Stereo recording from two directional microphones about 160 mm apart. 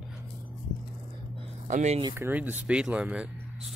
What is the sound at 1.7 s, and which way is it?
Speech, 45° right (ahead or behind).